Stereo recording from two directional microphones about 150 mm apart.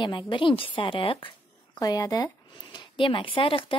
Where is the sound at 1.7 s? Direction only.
25° left (ahead or behind).